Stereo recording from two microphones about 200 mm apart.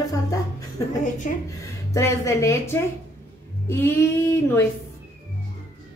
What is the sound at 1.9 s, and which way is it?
A woman's voice, 15° left (ahead or behind).